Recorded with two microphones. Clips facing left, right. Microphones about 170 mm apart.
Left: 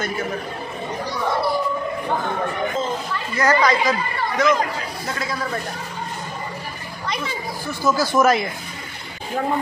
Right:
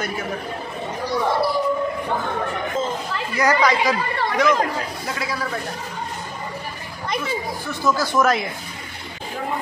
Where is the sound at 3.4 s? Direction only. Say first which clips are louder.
Even; 10° right (ahead or behind).